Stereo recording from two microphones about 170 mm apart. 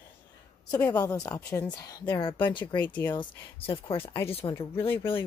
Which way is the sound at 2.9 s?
10° left (ahead or behind).